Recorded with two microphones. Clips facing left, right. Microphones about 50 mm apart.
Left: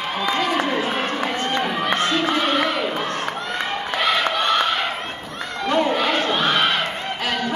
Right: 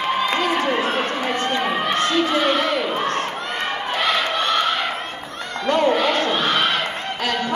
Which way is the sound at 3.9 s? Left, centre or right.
Centre.